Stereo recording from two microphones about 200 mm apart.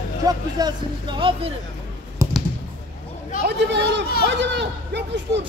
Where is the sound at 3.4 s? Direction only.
60° right (ahead or behind).